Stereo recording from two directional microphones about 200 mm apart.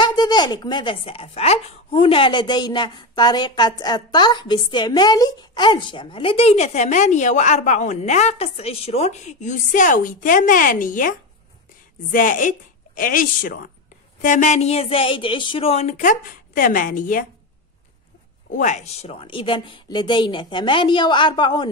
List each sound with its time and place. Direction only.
0.0 s a woman's voice: 20° left (ahead or behind); by 17.3 s 40° left (ahead or behind)
18.5 s speech: 40° left (ahead or behind)